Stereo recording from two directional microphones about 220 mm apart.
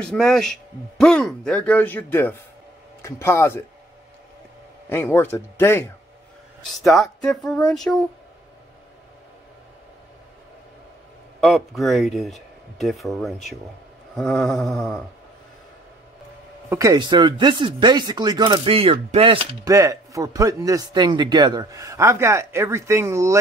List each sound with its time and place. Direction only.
0.0 s speech: 5° left (ahead or behind)
4.8 s speech: 10° left (ahead or behind)
11.4 s speech: centre (ahead or behind)
16.6 s speech: 15° right (ahead or behind)